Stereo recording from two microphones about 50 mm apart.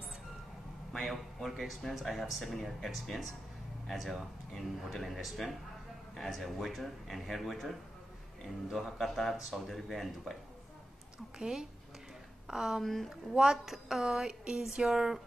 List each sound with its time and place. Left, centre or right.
0.9 s speech: centre
6.4 s speech: centre
11.3 s a woman's voice: centre
12.8 s speech: centre
13.3 s a woman's voice: centre